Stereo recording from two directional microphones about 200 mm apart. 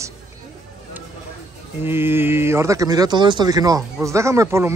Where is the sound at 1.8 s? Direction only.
10° right (ahead or behind).